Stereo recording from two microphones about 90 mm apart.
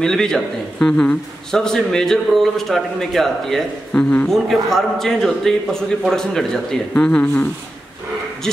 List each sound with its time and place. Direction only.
0.0 s a man's voice: 5° left (ahead or behind)
3.9 s speech: 15° left (ahead or behind)
4.3 s a man's voice: centre (ahead or behind)